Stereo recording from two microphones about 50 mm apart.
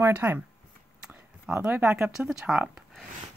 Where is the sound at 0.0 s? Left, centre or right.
Right.